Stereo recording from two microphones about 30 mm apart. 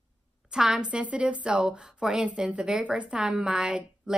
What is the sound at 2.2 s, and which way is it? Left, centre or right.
A woman's voice, right.